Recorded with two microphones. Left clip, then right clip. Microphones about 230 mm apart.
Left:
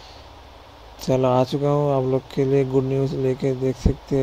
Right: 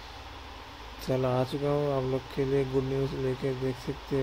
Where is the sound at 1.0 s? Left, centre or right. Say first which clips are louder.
Left 10 dB; left.